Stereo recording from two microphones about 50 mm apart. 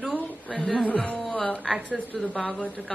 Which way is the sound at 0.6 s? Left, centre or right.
Centre.